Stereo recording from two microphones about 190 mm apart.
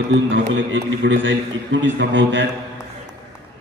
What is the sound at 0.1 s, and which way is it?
A man's voice, 80° right.